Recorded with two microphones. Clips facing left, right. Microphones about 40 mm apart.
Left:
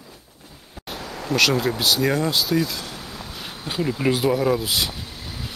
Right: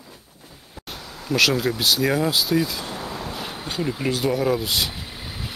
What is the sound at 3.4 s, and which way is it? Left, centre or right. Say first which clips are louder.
Speech: left 4 dB; centre.